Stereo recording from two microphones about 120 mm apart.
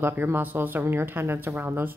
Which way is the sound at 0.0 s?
15° right (ahead or behind).